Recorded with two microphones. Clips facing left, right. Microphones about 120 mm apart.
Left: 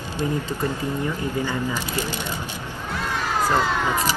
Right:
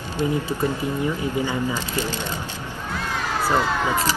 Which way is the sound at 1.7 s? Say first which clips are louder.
Right 1 dB; 15° left (ahead or behind).